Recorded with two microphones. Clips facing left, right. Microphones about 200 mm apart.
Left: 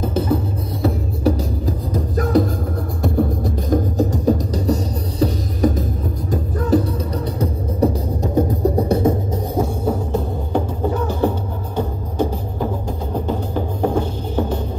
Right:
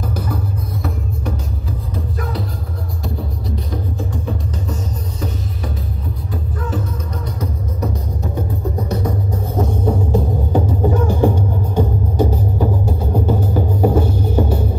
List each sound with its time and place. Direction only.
0.0 s music: 25° left (ahead or behind)
0.8 s music: 40° left (ahead or behind)
7.8 s music: 30° left (ahead or behind)
9.6 s music: 5° left (ahead or behind)
10.1 s music: 10° right (ahead or behind)